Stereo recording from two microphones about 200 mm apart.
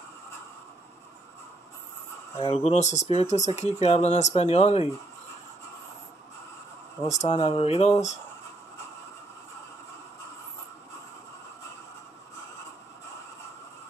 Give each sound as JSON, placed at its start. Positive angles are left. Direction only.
{"t": 2.3, "sound": "speech", "side_deg": 30}
{"t": 7.2, "sound": "speech", "side_deg": 30}